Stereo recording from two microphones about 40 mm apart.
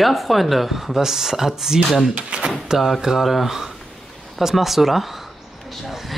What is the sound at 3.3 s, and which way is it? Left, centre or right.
Speech, centre.